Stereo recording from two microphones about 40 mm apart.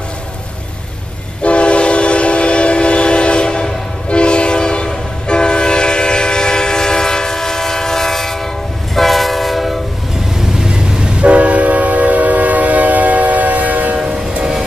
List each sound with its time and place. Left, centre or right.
1.4 s train: left; by 9.8 s centre
10.6 s vehicle: centre
11.2 s train: right
13.9 s train: centre